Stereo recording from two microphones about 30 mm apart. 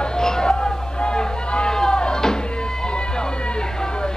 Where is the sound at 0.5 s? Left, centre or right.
Left.